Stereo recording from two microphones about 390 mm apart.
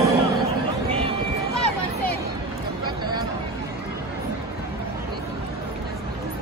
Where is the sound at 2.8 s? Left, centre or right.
Centre.